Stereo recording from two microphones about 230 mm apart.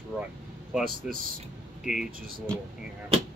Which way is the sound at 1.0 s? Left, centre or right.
Centre.